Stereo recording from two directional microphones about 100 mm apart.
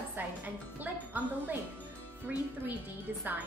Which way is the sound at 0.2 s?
20° right (ahead or behind).